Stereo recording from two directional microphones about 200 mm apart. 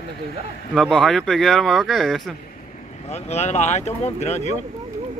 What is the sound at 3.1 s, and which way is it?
Speech, 35° left (ahead or behind).